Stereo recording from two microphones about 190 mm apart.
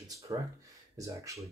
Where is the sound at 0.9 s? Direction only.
15° right (ahead or behind).